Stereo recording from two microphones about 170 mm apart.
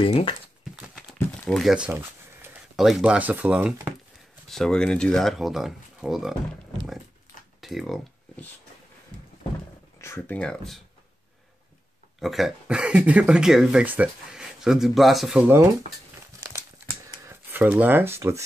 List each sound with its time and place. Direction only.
0.0 s speech: 30° left (ahead or behind)
0.8 s crumpling: 5° left (ahead or behind)
2.4 s speech: 5° right (ahead or behind)
4.5 s speech: 5° left (ahead or behind)
7.6 s a sound: centre (ahead or behind)
9.9 s speech: 15° left (ahead or behind)
12.2 s speech: centre (ahead or behind)
16.3 s crumpling: 15° right (ahead or behind)
17.2 s speech: 15° right (ahead or behind)